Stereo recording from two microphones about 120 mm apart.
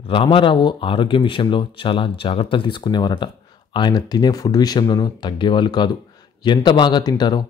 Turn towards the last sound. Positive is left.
turn(degrees=35)  # may be behind; listen again after turning